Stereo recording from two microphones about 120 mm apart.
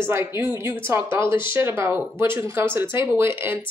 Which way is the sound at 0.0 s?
20° right (ahead or behind).